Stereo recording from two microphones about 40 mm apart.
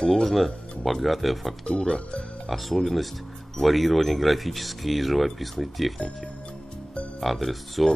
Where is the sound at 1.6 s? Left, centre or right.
Centre.